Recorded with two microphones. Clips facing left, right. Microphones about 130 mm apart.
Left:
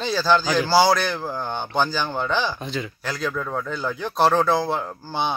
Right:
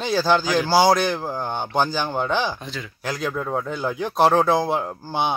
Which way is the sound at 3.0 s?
15° right (ahead or behind).